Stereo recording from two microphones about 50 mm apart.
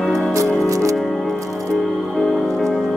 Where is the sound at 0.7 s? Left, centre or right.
Right.